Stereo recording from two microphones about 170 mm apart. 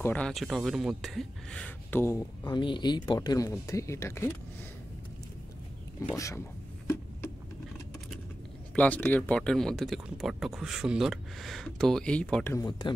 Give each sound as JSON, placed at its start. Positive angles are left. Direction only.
{"t": 0.0, "sound": "speech", "side_deg": 10}
{"t": 6.1, "sound": "speech", "side_deg": 20}
{"t": 8.7, "sound": "speech", "side_deg": 10}
{"t": 12.5, "sound": "speech", "side_deg": 25}